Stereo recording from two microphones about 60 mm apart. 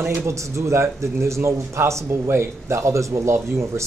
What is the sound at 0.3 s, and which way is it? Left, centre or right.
Speech, right.